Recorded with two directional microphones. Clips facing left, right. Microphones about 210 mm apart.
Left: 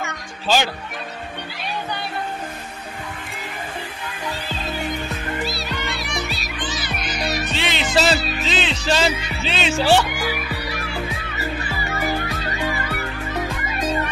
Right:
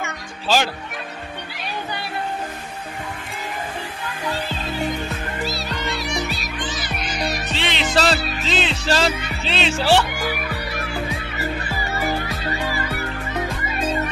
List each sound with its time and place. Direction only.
0.0 s music: centre (ahead or behind)
5.5 s music: 40° right (ahead or behind)
7.5 s music: centre (ahead or behind)
9.5 s speech: centre (ahead or behind)